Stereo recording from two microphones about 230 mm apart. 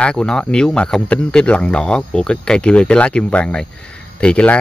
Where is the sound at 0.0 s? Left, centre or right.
Centre.